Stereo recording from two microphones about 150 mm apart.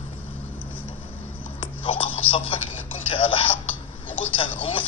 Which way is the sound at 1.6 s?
35° left (ahead or behind).